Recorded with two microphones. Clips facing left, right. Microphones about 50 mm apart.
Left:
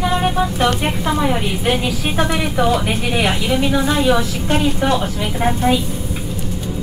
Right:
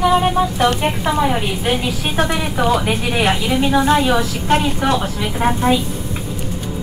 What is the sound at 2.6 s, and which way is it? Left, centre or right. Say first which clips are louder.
Speech: right 1 dB; centre.